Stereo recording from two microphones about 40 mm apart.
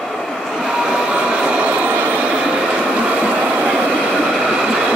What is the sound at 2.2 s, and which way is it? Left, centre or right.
Train, right.